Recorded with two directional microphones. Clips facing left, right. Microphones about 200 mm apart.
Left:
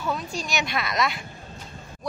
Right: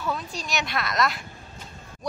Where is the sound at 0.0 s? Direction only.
Centre (ahead or behind).